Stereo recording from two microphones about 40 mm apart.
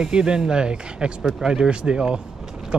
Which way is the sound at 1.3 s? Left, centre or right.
Centre.